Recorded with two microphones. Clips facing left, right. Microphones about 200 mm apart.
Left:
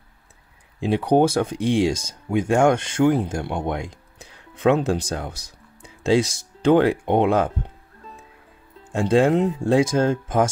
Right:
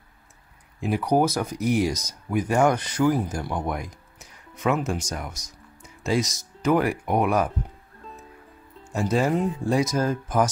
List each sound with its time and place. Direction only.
0.7 s speech: 30° left (ahead or behind)
9.2 s speech: 25° left (ahead or behind)